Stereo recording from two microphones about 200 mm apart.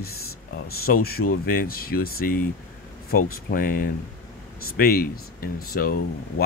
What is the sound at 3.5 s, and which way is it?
Speech, 45° left (ahead or behind).